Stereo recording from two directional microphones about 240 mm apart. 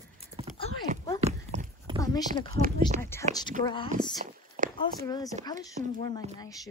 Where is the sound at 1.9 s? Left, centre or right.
Centre.